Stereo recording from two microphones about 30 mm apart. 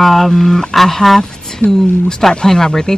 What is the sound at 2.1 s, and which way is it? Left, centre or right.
Speech, centre.